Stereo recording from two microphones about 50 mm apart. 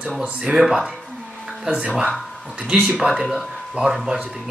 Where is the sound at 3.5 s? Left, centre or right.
Centre.